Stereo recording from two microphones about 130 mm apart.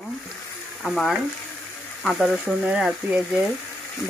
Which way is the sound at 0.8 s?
Centre (ahead or behind).